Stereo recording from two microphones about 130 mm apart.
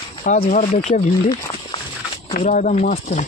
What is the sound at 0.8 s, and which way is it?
Speech, 55° left (ahead or behind).